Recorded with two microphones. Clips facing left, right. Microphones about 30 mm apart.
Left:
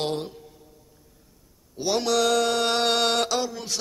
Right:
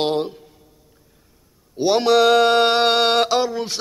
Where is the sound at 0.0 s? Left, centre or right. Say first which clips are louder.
Right 7 dB; right.